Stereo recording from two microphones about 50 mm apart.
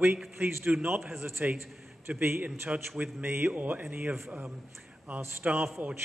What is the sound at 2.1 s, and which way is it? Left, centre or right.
A man's voice, right.